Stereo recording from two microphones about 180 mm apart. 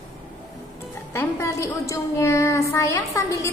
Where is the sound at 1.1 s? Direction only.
15° left (ahead or behind).